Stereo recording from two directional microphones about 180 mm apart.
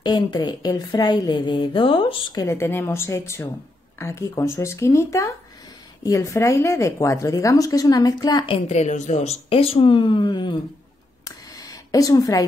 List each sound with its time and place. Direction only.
0.0 s a woman's voice: 25° left (ahead or behind)
2.4 s a woman's voice: 15° left (ahead or behind)
8.6 s speech: 40° left (ahead or behind)
11.2 s a sound: 20° left (ahead or behind)